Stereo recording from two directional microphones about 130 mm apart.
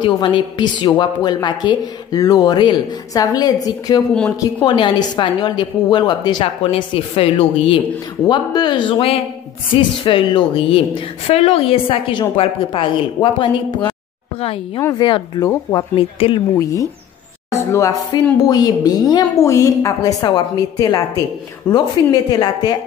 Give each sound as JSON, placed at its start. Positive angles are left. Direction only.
{"t": 0.0, "sound": "a woman's voice", "side_deg": 35}
{"t": 8.3, "sound": "a woman's voice", "side_deg": 35}
{"t": 15.0, "sound": "a woman's voice", "side_deg": 35}
{"t": 16.5, "sound": "a woman's voice", "side_deg": 25}